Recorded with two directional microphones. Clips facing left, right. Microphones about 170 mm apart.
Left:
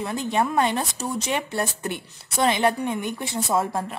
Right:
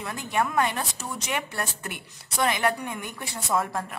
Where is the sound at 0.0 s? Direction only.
25° left (ahead or behind).